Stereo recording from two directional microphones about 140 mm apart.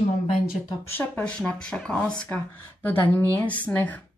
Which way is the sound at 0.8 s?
15° left (ahead or behind).